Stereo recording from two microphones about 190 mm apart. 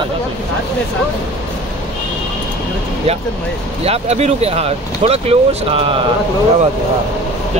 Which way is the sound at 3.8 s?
35° right (ahead or behind).